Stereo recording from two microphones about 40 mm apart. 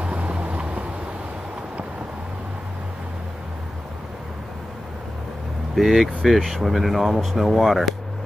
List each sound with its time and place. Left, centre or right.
0.0 s vehicle: right
5.8 s speech: centre